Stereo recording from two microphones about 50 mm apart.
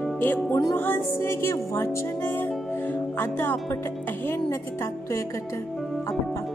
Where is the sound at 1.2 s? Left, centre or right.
Left.